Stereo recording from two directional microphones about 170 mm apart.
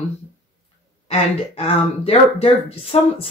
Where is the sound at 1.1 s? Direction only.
35° left (ahead or behind).